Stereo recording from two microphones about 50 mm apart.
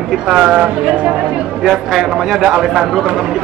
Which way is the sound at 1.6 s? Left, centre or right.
Centre.